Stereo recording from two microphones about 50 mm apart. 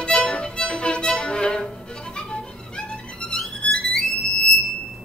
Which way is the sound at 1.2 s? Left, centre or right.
Centre.